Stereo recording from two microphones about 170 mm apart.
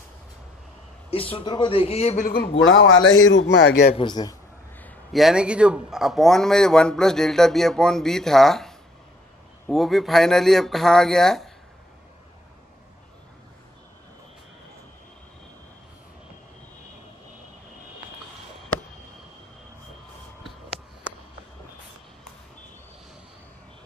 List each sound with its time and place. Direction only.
1.3 s a man's voice: 25° left (ahead or behind)
2.2 s speech: 65° left (ahead or behind)
2.8 s speech: 90° left
3.9 s speech: 25° left (ahead or behind)
5.1 s a man's voice: 5° right (ahead or behind)